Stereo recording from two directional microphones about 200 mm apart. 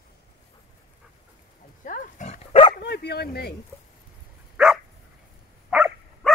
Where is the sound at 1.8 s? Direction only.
40° left (ahead or behind).